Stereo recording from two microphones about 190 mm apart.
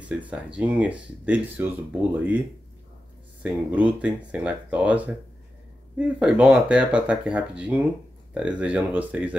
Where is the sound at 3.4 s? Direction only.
5° right (ahead or behind).